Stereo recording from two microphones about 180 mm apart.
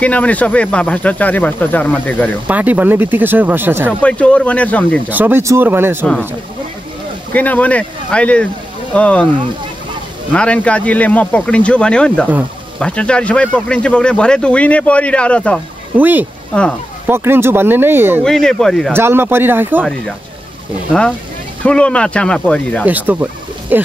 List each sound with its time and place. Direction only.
0.0 s speech: 10° left (ahead or behind)
2.4 s speech: 10° right (ahead or behind)
4.0 s speech: 5° left (ahead or behind)
5.1 s speech: 10° right (ahead or behind)
7.3 s speech: 10° left (ahead or behind)
10.3 s speech: 5° left (ahead or behind)
16.0 s speech: 10° right (ahead or behind)
18.2 s speech: 5° left (ahead or behind)
18.9 s speech: 15° right (ahead or behind)
21.6 s speech: 5° left (ahead or behind)
22.8 s speech: 10° right (ahead or behind)